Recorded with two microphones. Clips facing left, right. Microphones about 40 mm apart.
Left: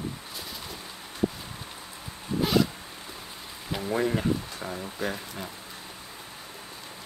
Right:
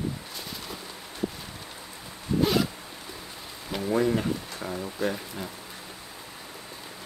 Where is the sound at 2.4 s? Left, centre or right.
Centre.